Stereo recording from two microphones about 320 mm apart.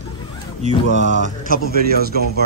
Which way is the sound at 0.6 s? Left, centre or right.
Right.